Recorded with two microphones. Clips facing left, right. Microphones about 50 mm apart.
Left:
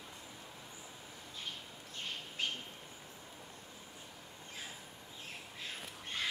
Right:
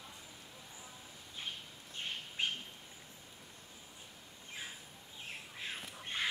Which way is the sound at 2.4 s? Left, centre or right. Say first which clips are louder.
Right 2 dB; right.